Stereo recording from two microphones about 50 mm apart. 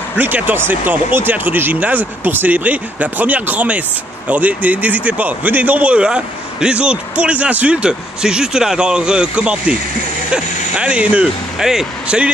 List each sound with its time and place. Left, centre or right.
0.2 s speech: right
11.5 s speech: centre
12.1 s speech: right